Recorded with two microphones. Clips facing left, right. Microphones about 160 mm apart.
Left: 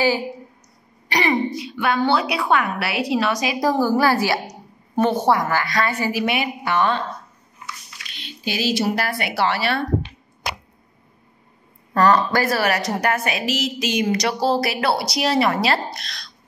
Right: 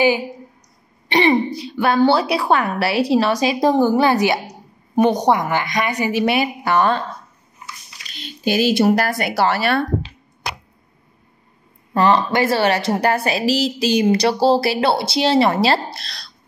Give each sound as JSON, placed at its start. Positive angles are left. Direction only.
{"t": 1.0, "sound": "a woman's voice", "side_deg": -25}
{"t": 6.2, "sound": "speech", "side_deg": -35}
{"t": 8.1, "sound": "speech", "side_deg": -45}
{"t": 11.9, "sound": "a woman's voice", "side_deg": -25}